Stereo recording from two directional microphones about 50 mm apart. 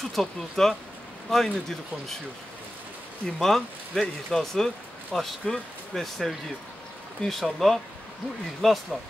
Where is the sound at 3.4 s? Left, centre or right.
Centre.